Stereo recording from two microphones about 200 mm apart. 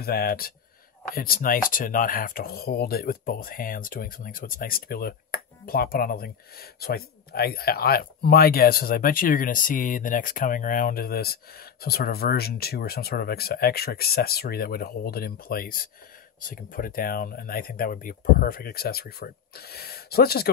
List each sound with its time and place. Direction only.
0.0 s speech: 50° left (ahead or behind)